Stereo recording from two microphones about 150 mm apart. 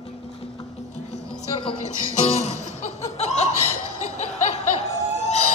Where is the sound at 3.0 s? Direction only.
45° left (ahead or behind).